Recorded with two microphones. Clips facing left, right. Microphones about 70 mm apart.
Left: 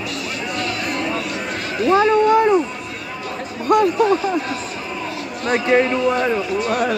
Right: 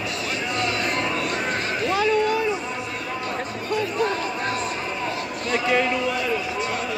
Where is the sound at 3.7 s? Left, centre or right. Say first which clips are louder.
Left 11 dB; left.